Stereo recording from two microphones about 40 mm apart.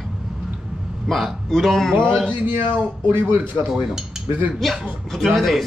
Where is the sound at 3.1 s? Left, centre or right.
Right.